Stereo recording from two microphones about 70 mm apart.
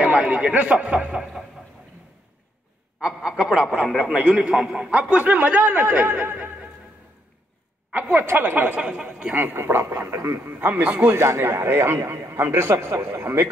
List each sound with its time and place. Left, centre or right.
0.0 s speech: right
3.0 s a man's voice: centre
4.0 s a man's voice: right
4.6 s speech: centre
4.9 s a man's voice: right
6.3 s a sound: centre
7.9 s a man's voice: right
10.1 s speech: right
10.4 s a man's voice: right
11.1 s speech: right